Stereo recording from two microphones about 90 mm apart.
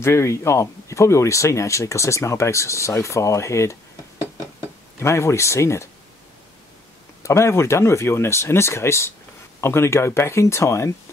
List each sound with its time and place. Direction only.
0.0 s speech: 30° left (ahead or behind)
5.0 s speech: 30° left (ahead or behind)
7.2 s speech: 30° left (ahead or behind)